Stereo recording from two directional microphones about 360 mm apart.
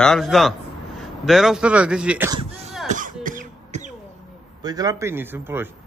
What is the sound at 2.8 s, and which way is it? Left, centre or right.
Cough, right.